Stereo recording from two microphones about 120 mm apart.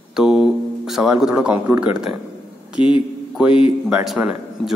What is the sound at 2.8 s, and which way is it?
Speech, 50° left (ahead or behind).